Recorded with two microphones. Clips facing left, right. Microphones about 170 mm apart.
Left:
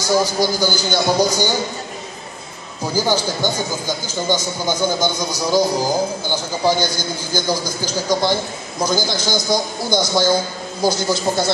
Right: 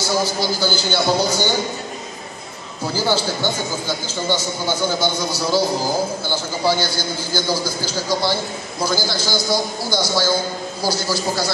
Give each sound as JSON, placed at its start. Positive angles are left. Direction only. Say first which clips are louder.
{"t": 0.2, "sound": "a man's voice", "louder": "left 3 dB", "side_deg": 15}
{"t": 2.9, "sound": "a man's voice", "louder": "left 1 dB", "side_deg": 15}